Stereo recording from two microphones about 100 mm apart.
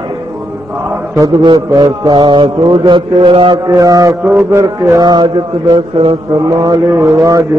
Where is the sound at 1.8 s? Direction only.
50° right (ahead or behind).